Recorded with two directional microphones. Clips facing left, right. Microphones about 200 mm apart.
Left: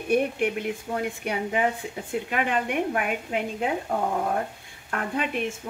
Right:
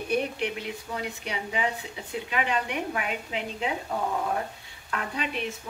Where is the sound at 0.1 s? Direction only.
50° left (ahead or behind).